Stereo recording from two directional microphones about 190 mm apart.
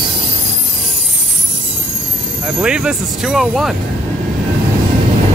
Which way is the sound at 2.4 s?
5° right (ahead or behind).